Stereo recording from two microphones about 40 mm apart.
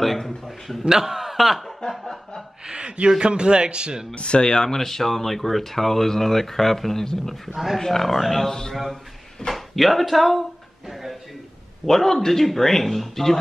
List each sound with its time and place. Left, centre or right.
0.0 s speech: centre
0.8 s a man's voice: centre
1.9 s speech: centre
2.6 s speech: right
4.1 s speech: left
4.6 s speech: centre
7.5 s a man's voice: centre
11.8 s speech: centre